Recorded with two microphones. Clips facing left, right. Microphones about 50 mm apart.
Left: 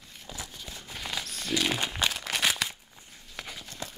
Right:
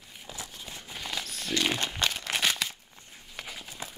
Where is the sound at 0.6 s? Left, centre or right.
Centre.